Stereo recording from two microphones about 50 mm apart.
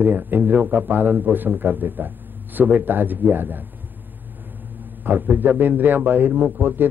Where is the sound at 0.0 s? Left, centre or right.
Right.